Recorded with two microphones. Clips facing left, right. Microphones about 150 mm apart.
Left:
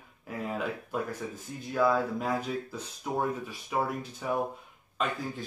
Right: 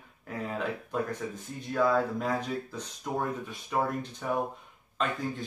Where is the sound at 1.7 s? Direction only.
5° left (ahead or behind).